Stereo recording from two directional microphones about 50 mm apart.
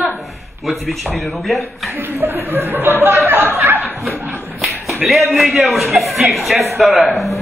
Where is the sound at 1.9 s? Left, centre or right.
Right.